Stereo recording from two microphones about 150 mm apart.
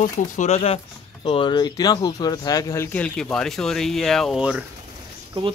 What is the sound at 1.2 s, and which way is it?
Speech, 35° left (ahead or behind).